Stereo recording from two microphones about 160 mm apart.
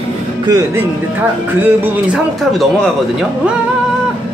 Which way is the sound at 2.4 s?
Centre (ahead or behind).